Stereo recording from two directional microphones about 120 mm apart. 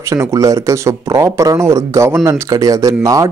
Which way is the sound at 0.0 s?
25° right (ahead or behind).